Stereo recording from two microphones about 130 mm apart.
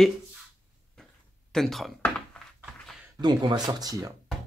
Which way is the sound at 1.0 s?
5° left (ahead or behind).